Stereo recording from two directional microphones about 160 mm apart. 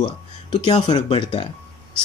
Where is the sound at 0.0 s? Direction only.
30° left (ahead or behind).